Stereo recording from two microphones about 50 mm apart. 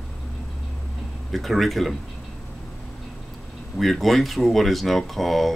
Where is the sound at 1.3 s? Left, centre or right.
Centre.